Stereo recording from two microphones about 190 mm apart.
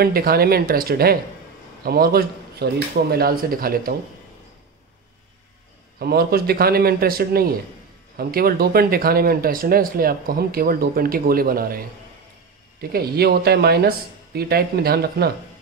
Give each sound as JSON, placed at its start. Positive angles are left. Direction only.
{"t": 0.0, "sound": "speech", "side_deg": -50}
{"t": 5.9, "sound": "speech", "side_deg": -55}
{"t": 12.9, "sound": "speech", "side_deg": -55}